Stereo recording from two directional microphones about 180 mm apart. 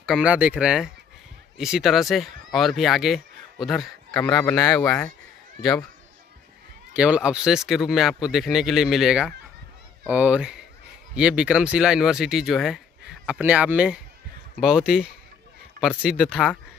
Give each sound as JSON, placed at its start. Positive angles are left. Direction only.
{"t": 0.0, "sound": "speech", "side_deg": -5}
{"t": 4.6, "sound": "speech", "side_deg": 15}
{"t": 6.9, "sound": "speech", "side_deg": -5}